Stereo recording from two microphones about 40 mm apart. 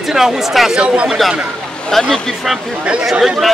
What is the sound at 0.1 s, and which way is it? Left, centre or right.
Speech, centre.